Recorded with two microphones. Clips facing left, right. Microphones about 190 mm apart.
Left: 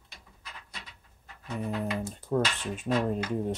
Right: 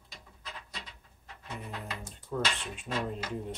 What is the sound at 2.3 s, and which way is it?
Speech, 45° left (ahead or behind).